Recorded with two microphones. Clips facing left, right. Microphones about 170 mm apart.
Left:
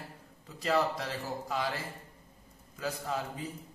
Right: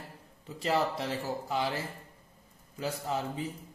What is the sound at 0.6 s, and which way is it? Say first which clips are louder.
Speech: even; 25° right (ahead or behind).